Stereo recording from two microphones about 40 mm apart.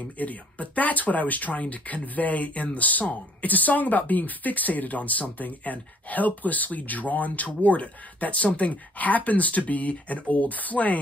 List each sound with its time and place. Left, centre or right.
0.2 s speech: left